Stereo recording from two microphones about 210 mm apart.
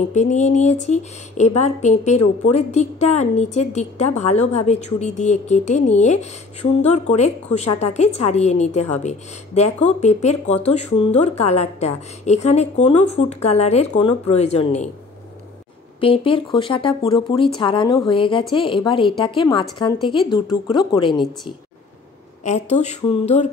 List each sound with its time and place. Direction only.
0.1 s a woman's voice: 35° left (ahead or behind)
16.0 s speech: 25° left (ahead or behind)
22.4 s a woman's voice: 30° left (ahead or behind)